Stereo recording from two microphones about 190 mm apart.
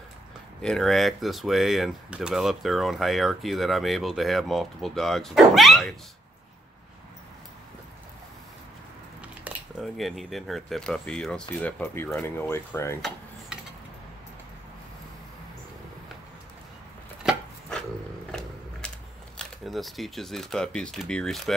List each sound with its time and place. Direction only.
0.6 s speech: 5° left (ahead or behind)
9.4 s speech: centre (ahead or behind)
17.2 s chopping: centre (ahead or behind)
18.8 s a sound: 5° left (ahead or behind)
19.3 s speech: centre (ahead or behind)